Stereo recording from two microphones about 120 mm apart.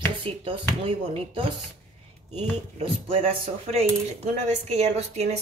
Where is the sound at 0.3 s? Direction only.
55° right (ahead or behind).